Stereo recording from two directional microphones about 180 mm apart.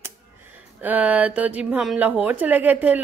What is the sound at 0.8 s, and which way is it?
Speech, 10° right (ahead or behind).